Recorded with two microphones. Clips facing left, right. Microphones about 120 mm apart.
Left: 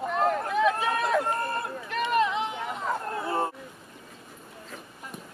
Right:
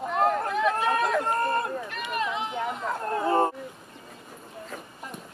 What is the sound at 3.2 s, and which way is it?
Bow-wow, 40° right (ahead or behind).